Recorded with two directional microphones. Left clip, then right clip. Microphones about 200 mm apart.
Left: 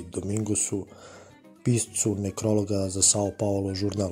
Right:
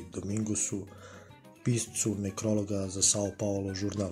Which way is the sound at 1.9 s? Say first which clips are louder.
Left 5 dB; 25° left (ahead or behind).